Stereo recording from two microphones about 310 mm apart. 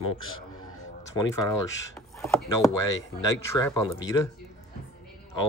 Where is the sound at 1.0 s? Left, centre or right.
Centre.